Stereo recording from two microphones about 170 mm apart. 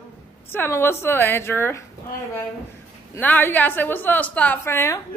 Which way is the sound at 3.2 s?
10° left (ahead or behind).